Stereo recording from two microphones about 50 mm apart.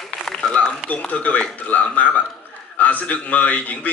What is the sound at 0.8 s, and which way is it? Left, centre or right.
A man's voice, left.